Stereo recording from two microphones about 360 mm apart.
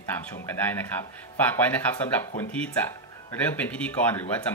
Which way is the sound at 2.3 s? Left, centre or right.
Centre.